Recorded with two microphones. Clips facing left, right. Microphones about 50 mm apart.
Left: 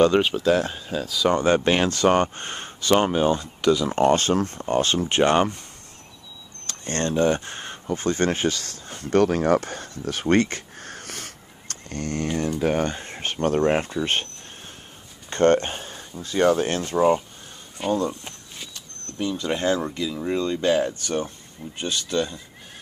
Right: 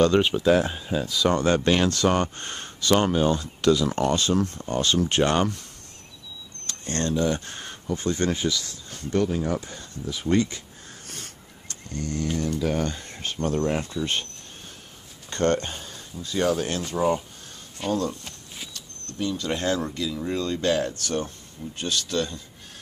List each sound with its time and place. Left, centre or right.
0.4 s speech: centre
4.0 s speech: left
4.6 s speech: left
6.7 s speech: left
8.0 s speech: left
9.1 s a sound: left
12.5 s speech: left
15.2 s speech: left; by 22.4 s centre